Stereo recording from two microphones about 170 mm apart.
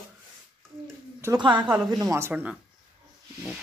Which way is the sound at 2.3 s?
5° right (ahead or behind).